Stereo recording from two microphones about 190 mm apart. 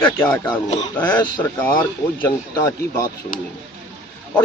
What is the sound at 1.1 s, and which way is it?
Speech, 25° left (ahead or behind).